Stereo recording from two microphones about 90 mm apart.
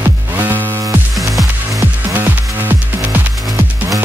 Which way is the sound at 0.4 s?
25° right (ahead or behind).